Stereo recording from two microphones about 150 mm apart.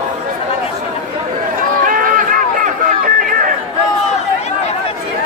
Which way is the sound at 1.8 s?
65° right (ahead or behind).